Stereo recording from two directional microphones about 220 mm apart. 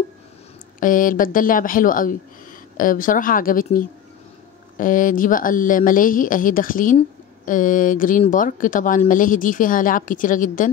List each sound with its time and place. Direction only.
0.7 s speech: 40° left (ahead or behind)